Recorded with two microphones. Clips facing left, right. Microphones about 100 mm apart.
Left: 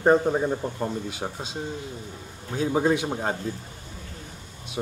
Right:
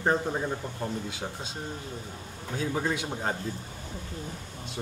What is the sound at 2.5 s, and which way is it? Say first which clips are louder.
Speech: left 7 dB; 20° left (ahead or behind).